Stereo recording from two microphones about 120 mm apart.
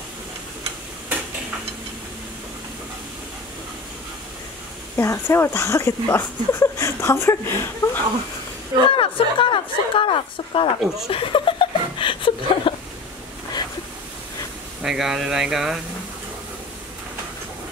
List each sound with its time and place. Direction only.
4.9 s speech: 20° left (ahead or behind)
8.9 s a woman's voice: 45° left (ahead or behind)
11.1 s chuckle: 50° left (ahead or behind)
14.8 s speech: 5° right (ahead or behind)